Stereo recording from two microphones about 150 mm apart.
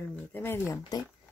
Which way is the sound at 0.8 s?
25° left (ahead or behind).